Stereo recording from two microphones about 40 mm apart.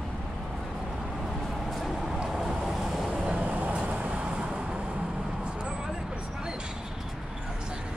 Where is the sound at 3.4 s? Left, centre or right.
Right.